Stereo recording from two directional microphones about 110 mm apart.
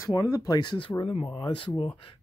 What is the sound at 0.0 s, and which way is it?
Speech, 30° left (ahead or behind).